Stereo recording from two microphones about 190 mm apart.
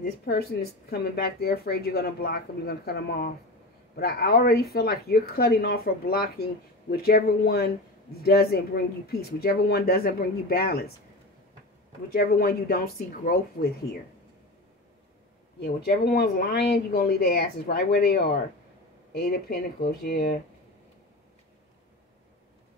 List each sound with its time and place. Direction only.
0.3 s speech: 55° left (ahead or behind)
12.1 s speech: 55° left (ahead or behind)
15.6 s speech: 55° left (ahead or behind)